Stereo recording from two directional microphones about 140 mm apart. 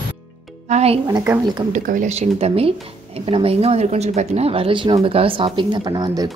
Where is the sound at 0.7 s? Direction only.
50° right (ahead or behind).